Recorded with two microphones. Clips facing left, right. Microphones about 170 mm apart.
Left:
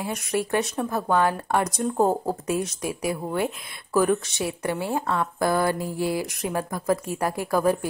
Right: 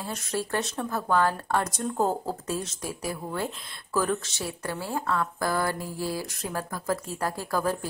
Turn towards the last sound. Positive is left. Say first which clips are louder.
# left 5 dB
turn(degrees=15)  # may be behind; listen again after turning